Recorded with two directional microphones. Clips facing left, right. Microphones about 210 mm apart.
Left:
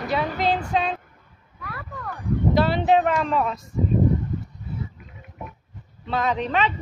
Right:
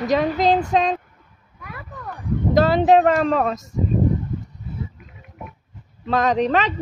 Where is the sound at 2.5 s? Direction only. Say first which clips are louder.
Right 5 dB; 40° right (ahead or behind).